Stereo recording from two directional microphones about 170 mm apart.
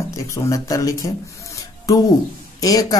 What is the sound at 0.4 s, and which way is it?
Speech, 20° left (ahead or behind).